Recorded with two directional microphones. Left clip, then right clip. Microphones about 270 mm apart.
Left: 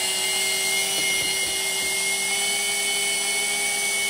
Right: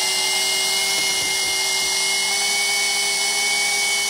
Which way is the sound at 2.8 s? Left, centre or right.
Centre.